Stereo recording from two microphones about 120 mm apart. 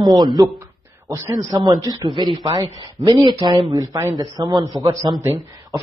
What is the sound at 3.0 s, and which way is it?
Speech, 30° right (ahead or behind).